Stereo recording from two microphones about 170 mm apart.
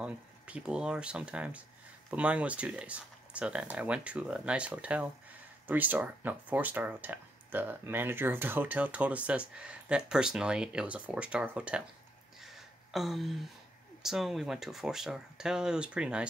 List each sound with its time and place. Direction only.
0.0 s speech: 5° right (ahead or behind)
12.9 s speech: centre (ahead or behind)